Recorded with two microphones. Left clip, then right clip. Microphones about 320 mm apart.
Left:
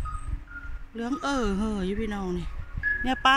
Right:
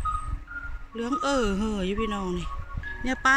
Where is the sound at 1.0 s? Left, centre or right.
Centre.